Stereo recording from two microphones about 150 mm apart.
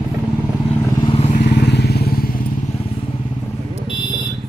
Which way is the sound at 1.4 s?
90° left.